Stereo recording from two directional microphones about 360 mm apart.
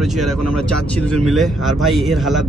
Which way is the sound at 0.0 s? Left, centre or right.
Centre.